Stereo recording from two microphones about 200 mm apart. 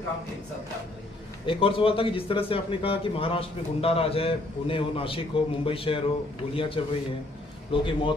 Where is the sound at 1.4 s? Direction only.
25° left (ahead or behind).